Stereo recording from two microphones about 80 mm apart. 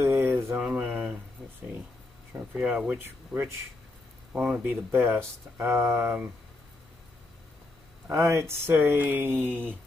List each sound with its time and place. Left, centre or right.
0.0 s mantra: right
0.6 s a sound: centre
2.3 s speech: centre
4.3 s speech: centre; by 6.1 s right
8.1 s speech: right
8.4 s speech: right